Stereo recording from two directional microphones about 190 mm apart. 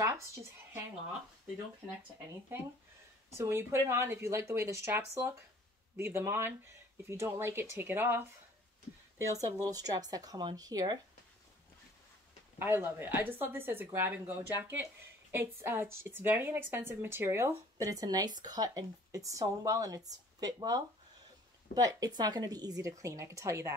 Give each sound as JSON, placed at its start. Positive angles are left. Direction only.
{"t": 0.0, "sound": "speech", "side_deg": -15}
{"t": 3.3, "sound": "speech", "side_deg": -15}
{"t": 9.7, "sound": "speech", "side_deg": -20}
{"t": 12.5, "sound": "speech", "side_deg": -10}